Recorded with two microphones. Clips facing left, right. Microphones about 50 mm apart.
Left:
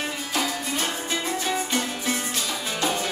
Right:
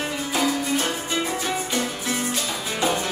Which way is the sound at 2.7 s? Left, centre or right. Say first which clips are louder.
Right 3 dB; right.